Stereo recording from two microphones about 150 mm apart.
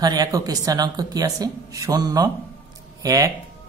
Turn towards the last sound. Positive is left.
turn(degrees=-25)  # may be behind; listen again after turning